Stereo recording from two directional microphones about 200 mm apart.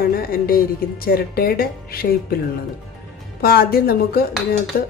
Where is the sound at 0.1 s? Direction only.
45° left (ahead or behind).